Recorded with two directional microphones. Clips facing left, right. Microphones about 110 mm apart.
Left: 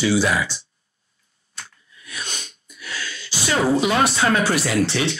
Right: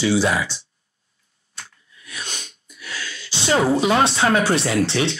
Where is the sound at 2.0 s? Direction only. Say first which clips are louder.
Left 1 dB; 25° right (ahead or behind).